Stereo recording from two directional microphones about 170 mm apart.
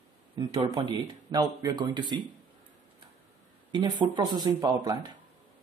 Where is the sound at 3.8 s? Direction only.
25° right (ahead or behind).